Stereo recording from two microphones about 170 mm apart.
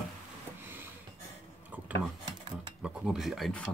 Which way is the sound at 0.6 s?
10° right (ahead or behind).